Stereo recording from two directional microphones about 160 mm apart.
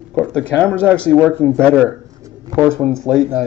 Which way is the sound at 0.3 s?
5° left (ahead or behind).